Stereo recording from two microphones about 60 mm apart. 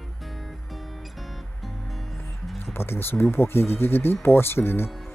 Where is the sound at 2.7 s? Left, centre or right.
Left.